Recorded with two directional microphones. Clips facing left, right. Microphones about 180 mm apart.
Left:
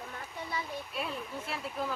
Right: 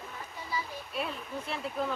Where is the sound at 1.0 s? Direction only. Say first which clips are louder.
Right 3 dB; centre (ahead or behind).